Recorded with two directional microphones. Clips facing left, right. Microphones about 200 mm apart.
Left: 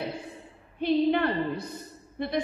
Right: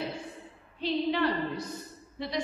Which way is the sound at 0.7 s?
55° left (ahead or behind).